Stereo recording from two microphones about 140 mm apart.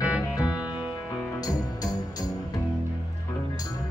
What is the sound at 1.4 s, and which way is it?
Music, 25° left (ahead or behind).